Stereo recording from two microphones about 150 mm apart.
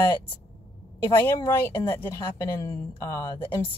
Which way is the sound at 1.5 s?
15° left (ahead or behind).